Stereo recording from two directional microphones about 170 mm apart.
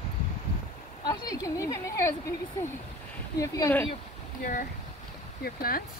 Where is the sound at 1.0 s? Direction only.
20° left (ahead or behind).